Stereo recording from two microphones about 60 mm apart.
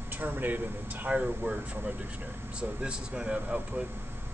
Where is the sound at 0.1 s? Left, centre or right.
Right; by 3.8 s centre.